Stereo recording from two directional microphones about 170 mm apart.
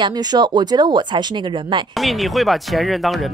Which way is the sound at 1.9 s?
Centre (ahead or behind).